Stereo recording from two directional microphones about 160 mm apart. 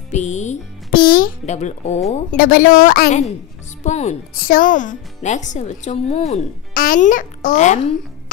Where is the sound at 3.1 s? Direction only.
45° left (ahead or behind).